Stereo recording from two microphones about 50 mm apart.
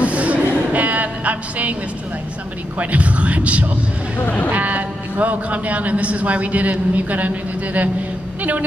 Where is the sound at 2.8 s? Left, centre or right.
Right.